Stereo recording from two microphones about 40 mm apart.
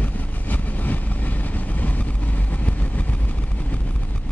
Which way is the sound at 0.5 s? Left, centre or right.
Left.